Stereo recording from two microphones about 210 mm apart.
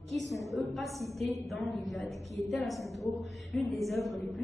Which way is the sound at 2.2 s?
30° right (ahead or behind).